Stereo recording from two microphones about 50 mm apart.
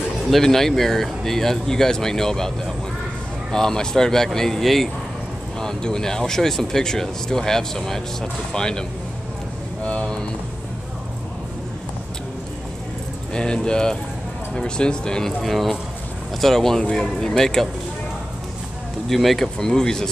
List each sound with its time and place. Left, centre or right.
0.3 s speech: centre
3.5 s speech: centre
9.8 s a sound: left
13.3 s speech: centre
15.4 s speech: centre
19.0 s speech: centre